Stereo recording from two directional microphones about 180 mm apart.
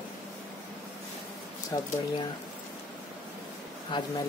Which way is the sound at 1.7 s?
25° left (ahead or behind).